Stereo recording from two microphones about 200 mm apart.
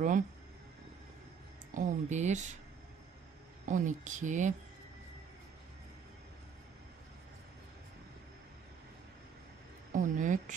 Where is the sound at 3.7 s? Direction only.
40° right (ahead or behind).